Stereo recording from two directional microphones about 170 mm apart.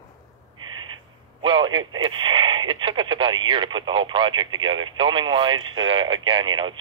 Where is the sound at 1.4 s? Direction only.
30° right (ahead or behind).